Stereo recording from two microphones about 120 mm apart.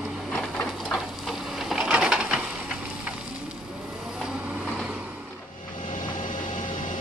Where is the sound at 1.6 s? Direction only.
5° right (ahead or behind).